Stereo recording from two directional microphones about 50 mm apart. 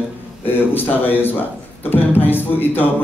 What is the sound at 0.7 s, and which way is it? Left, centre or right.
A man's voice, left.